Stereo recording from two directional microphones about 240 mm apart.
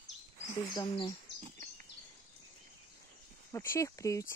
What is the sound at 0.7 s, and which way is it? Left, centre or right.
Speech, centre.